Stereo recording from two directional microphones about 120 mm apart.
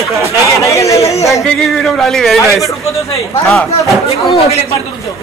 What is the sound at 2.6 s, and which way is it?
Speech, 25° left (ahead or behind).